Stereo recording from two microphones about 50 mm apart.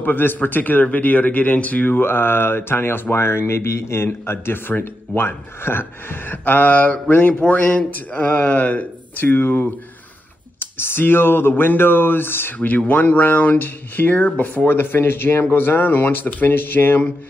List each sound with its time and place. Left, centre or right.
0.0 s speech: left
1.9 s speech: left
9.2 s speech: left
12.5 s speech: left